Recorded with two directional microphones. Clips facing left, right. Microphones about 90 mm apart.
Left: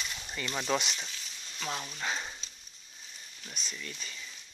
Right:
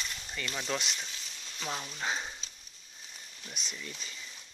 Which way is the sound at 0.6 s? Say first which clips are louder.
Left 5 dB; 5° left (ahead or behind).